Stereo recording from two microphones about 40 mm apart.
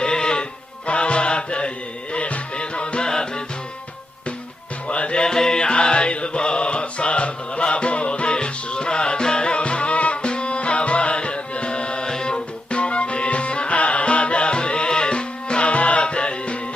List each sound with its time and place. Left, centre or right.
0.0 s music: left
4.8 s music: left
5.2 s music: centre